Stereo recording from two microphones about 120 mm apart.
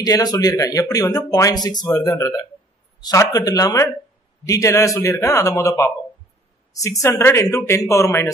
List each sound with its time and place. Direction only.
0.0 s speech: 30° left (ahead or behind)